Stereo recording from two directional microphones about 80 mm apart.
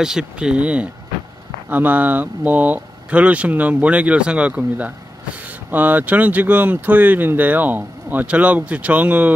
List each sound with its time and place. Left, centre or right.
0.0 s speech: centre